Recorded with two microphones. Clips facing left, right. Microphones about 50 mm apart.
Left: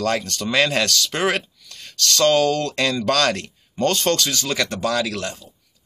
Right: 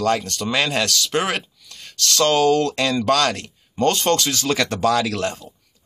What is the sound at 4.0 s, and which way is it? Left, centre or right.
Speech, right.